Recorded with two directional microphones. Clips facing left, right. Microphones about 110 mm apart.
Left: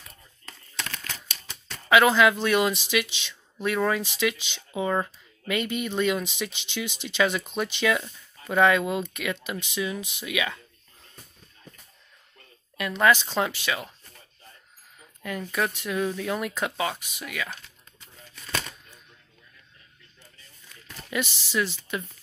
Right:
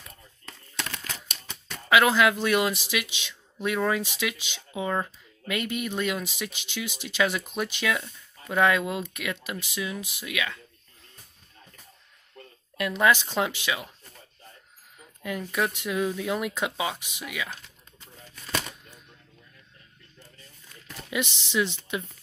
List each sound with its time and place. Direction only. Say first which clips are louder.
0.1 s a sound: right 1 dB; 5° right (ahead or behind)
1.3 s speech: right 1 dB; centre (ahead or behind)
12.7 s speech: left 1 dB; 5° right (ahead or behind)
15.2 s speech: even; 10° right (ahead or behind)
18.5 s shuffling cards: right 1 dB; 15° right (ahead or behind)
20.8 s a sound: even; 10° right (ahead or behind)
21.5 s speech: right 1 dB; 20° right (ahead or behind)